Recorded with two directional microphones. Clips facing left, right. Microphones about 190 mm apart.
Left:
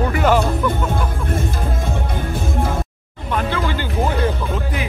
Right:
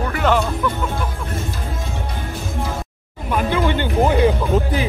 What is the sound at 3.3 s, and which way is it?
Music, 15° right (ahead or behind).